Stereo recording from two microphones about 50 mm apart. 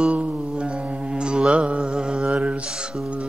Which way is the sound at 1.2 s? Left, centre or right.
Centre.